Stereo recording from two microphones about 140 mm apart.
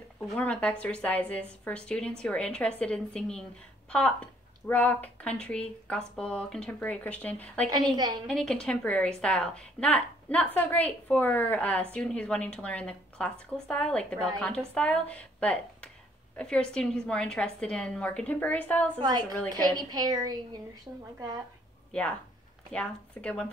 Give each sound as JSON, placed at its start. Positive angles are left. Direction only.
{"t": 0.4, "sound": "a woman's voice", "side_deg": 10}
{"t": 7.9, "sound": "a woman's voice", "side_deg": -30}
{"t": 8.3, "sound": "a woman's voice", "side_deg": 5}
{"t": 18.9, "sound": "a woman's voice", "side_deg": -35}
{"t": 22.7, "sound": "a woman's voice", "side_deg": 5}